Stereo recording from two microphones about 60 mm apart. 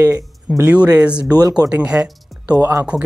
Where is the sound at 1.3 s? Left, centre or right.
Right.